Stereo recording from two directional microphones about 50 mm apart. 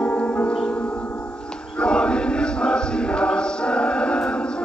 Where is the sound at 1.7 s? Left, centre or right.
Centre.